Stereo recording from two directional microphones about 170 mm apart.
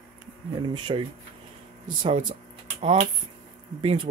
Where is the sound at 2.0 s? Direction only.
40° right (ahead or behind).